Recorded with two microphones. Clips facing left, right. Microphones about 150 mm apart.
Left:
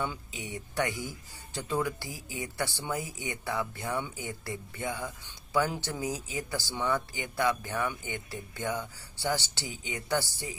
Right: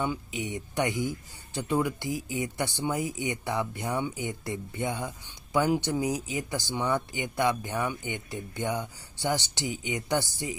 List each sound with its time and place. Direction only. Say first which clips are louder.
0.0 s speech: right 5 dB; 15° right (ahead or behind)